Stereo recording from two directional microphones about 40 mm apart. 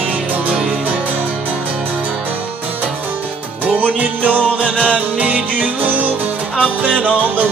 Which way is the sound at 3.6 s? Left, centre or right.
Right.